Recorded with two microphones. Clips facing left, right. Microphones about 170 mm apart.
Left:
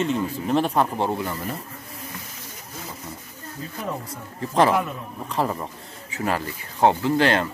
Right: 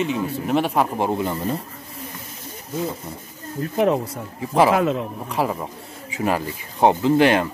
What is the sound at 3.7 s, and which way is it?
Speech, 85° right.